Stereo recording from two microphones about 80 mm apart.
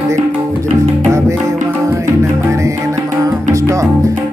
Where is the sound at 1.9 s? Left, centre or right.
Right.